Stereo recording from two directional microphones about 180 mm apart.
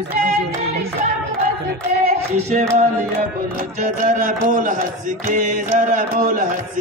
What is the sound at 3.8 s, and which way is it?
Music, 45° right (ahead or behind).